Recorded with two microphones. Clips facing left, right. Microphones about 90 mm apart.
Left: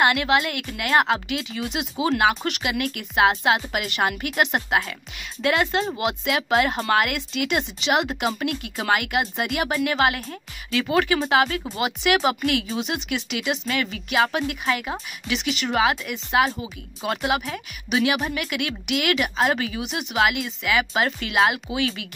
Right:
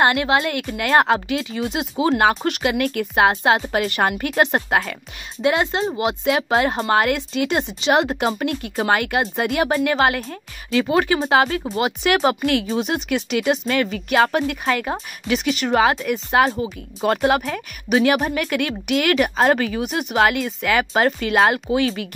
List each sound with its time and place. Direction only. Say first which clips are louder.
0.0 s speech: right 2 dB; 30° right (ahead or behind)